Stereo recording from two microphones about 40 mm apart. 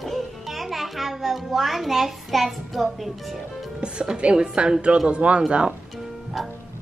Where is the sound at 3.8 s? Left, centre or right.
Right.